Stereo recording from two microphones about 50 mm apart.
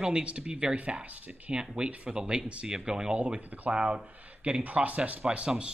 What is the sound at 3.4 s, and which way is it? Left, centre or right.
Speech, right.